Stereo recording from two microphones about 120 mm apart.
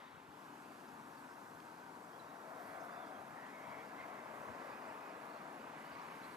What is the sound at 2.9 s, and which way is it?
Vehicle, 15° right (ahead or behind).